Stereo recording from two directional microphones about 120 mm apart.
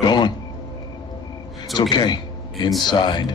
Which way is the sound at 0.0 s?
35° left (ahead or behind).